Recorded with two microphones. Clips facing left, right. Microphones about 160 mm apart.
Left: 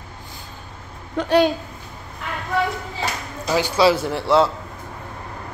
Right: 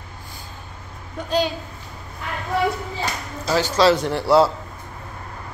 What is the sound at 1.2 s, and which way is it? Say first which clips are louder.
Speech: left 8 dB; 90° left.